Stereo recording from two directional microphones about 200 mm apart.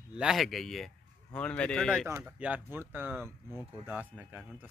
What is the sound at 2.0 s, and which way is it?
Speech, 10° right (ahead or behind).